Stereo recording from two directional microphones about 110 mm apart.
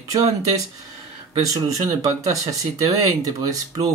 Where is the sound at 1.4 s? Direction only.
35° right (ahead or behind).